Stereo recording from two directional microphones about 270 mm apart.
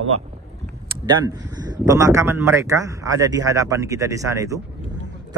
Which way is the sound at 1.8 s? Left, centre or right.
Centre.